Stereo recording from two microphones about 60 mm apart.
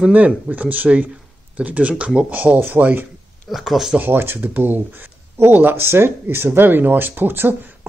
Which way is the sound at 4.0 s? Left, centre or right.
Right.